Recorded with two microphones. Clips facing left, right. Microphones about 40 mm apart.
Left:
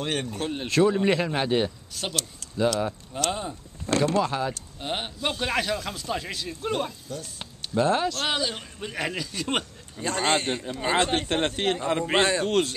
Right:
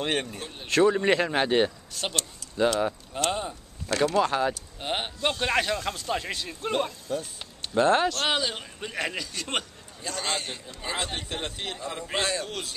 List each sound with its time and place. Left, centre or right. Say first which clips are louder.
0.0 s speech: right 1 dB; centre
0.4 s a man's voice: left 9 dB; left
0.7 s a man's voice: right 1 dB; centre
7.1 s speech: right 5 dB; right
7.7 s a man's voice: right 2 dB; centre
10.0 s a man's voice: left 7 dB; left